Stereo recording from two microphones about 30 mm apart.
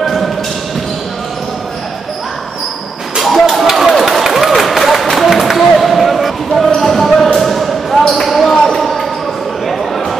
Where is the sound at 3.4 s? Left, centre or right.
Centre.